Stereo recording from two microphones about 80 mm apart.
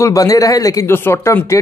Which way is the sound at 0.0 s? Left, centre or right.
Left.